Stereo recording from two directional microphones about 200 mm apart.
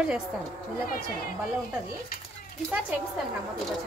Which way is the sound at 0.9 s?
50° left (ahead or behind).